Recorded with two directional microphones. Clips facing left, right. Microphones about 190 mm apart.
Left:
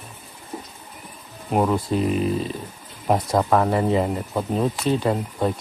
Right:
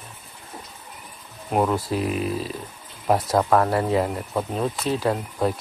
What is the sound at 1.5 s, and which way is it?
Speech, centre (ahead or behind).